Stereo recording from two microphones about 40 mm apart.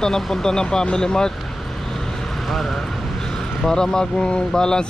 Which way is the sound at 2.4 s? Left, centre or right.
Centre.